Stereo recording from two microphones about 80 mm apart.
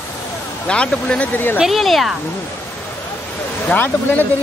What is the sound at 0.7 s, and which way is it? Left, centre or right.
Speech, centre.